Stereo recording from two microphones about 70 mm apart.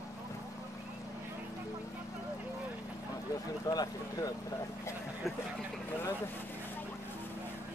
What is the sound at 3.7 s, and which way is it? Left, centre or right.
Speech, left.